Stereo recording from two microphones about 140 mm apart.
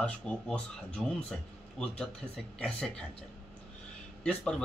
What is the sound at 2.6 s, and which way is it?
Speech, 5° left (ahead or behind).